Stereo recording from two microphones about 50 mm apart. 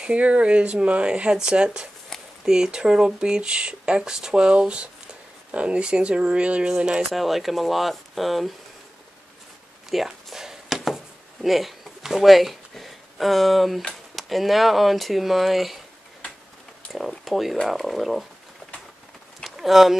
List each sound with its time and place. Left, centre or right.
0.0 s speech: right
7.1 s speech: centre
9.8 s a sound: centre
11.4 s speech: centre
17.2 s speech: centre
19.4 s a sound: centre